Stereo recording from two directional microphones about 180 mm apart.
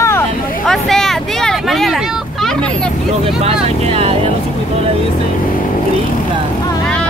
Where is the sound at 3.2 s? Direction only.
35° right (ahead or behind).